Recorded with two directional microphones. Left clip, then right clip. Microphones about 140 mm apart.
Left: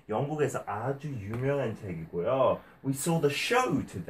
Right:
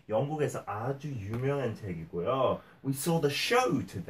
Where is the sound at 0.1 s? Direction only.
20° left (ahead or behind).